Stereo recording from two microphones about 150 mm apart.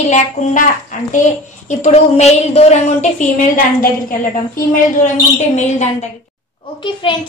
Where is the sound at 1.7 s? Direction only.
50° left (ahead or behind).